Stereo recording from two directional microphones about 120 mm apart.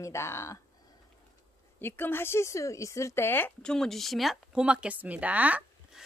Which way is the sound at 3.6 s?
5° left (ahead or behind).